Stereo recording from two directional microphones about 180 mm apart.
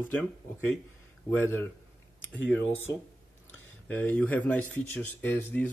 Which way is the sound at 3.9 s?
10° left (ahead or behind).